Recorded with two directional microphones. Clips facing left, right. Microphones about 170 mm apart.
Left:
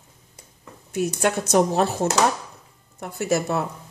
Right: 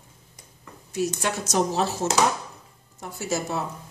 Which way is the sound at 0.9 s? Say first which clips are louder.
Left 4 dB; 55° left (ahead or behind).